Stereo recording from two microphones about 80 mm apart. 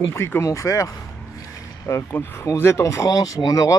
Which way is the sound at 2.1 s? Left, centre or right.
Left.